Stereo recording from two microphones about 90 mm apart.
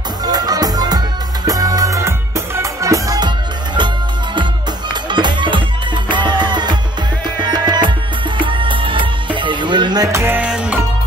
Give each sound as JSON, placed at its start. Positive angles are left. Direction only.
{"t": 0.2, "sound": "music", "side_deg": -45}
{"t": 2.0, "sound": "music", "side_deg": -30}
{"t": 3.2, "sound": "music", "side_deg": -60}
{"t": 5.1, "sound": "music", "side_deg": -60}
{"t": 8.4, "sound": "music", "side_deg": -65}
{"t": 10.1, "sound": "music", "side_deg": -25}
{"t": 10.4, "sound": "music", "side_deg": -10}